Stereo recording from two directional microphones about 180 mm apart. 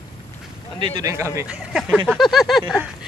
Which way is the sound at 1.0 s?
15° right (ahead or behind).